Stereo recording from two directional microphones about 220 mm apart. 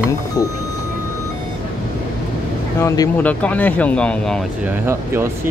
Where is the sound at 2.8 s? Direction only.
15° left (ahead or behind).